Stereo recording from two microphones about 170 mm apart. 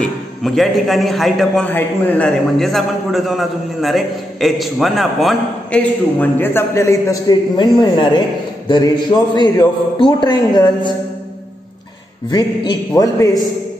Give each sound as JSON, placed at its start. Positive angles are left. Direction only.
{"t": 0.0, "sound": "a man's voice", "side_deg": 0}
{"t": 12.3, "sound": "a man's voice", "side_deg": 25}